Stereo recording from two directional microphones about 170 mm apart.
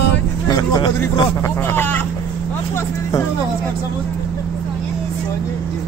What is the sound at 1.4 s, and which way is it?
Speech, 15° left (ahead or behind).